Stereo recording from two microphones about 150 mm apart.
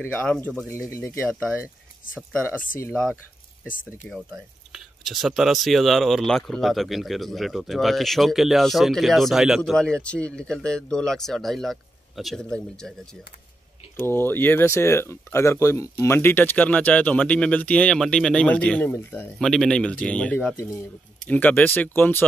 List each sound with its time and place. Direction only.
0.0 s speech: 15° left (ahead or behind)
14.0 s speech: 15° left (ahead or behind)
19.3 s speech: 5° left (ahead or behind)